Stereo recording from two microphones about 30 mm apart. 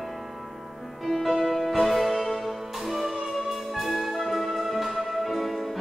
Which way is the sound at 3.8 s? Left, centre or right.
Centre.